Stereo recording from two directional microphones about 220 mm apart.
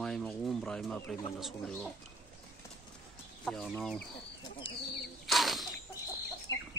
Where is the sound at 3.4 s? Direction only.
Centre (ahead or behind).